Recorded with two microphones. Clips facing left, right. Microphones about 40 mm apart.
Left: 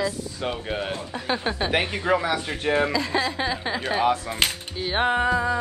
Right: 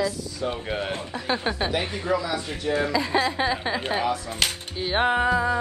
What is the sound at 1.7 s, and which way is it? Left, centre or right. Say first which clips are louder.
A man's voice: left 3 dB; left.